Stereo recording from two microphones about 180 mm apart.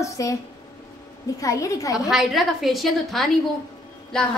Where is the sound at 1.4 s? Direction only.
20° left (ahead or behind).